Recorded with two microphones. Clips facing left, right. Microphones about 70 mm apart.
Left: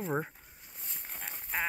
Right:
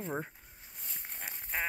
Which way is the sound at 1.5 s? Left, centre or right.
Centre.